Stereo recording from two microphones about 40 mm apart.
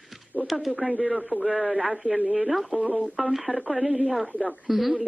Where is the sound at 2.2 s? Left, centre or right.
Centre.